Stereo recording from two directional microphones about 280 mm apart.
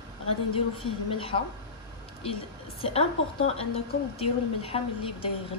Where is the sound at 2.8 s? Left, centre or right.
Centre.